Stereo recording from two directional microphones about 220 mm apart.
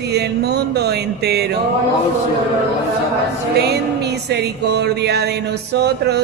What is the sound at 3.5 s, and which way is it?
Mantra, 50° right (ahead or behind).